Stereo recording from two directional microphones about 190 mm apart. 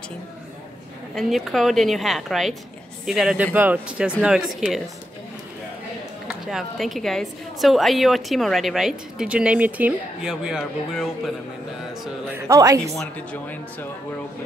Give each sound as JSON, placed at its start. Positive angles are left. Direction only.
{"t": 1.1, "sound": "a woman's voice", "side_deg": 0}
{"t": 6.2, "sound": "a woman's voice", "side_deg": 0}
{"t": 12.4, "sound": "speech", "side_deg": -15}
{"t": 13.0, "sound": "speech", "side_deg": 5}